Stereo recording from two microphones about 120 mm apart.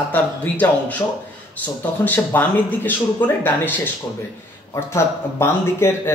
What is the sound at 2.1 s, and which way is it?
Speech, 15° left (ahead or behind).